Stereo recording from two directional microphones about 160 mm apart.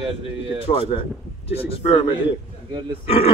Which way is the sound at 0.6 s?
40° left (ahead or behind).